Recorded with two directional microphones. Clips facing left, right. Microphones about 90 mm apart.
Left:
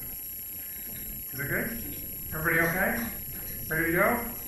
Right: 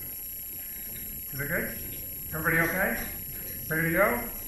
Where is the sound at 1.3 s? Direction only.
Centre (ahead or behind).